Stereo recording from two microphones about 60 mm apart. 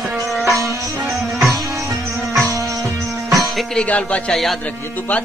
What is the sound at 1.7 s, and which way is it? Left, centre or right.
Music, right.